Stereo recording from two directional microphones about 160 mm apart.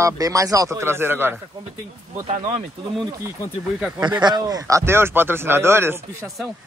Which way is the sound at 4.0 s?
25° right (ahead or behind).